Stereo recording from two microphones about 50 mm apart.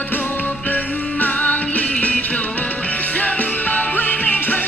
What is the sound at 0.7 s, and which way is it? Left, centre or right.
Music, left.